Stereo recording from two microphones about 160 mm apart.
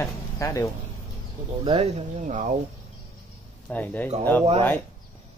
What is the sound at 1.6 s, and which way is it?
Speech, 40° right (ahead or behind).